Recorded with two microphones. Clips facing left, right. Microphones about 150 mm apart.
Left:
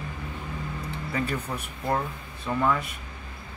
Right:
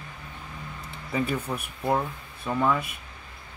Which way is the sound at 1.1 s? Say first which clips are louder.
Right 3 dB; 15° right (ahead or behind).